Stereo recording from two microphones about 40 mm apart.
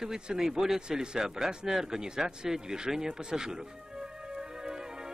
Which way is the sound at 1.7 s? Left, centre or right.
Centre.